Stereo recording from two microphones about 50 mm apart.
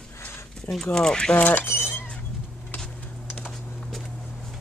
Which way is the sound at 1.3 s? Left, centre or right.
Left.